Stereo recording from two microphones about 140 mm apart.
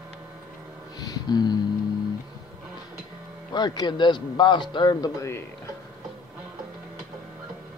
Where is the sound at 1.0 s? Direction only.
30° left (ahead or behind).